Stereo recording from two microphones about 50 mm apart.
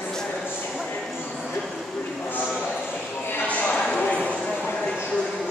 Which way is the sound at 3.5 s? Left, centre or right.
Left.